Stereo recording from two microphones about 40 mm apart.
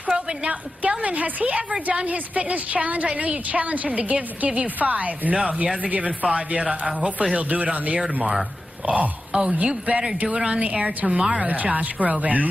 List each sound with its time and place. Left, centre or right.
0.0 s a woman's voice: right
5.3 s speech: right
5.8 s a woman's voice: right
9.3 s speech: right
9.6 s a woman's voice: right
10.2 s a woman's voice: right